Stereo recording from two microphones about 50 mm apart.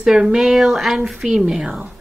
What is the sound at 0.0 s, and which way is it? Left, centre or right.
Speech, centre.